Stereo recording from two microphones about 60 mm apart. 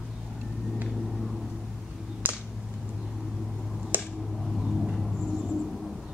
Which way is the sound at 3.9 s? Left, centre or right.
Right.